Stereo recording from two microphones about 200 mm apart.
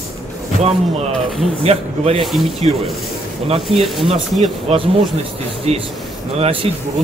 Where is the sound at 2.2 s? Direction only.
Centre (ahead or behind).